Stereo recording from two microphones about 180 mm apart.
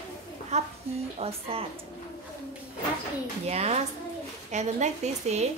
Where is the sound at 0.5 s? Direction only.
40° right (ahead or behind).